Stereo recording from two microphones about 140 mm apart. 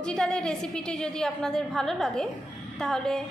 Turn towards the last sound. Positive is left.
turn(degrees=5)  # may be behind; listen again after turning